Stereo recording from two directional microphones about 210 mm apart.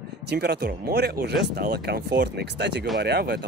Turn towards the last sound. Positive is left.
turn(degrees=-50)  # may be behind; listen again after turning